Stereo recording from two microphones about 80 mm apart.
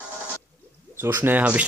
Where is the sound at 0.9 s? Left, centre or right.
Right.